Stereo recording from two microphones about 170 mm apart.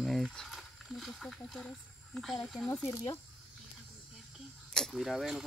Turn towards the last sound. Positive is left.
turn(degrees=0)  # may be behind; listen again after turning